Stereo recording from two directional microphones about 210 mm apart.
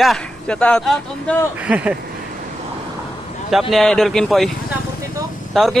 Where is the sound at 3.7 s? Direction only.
Centre (ahead or behind).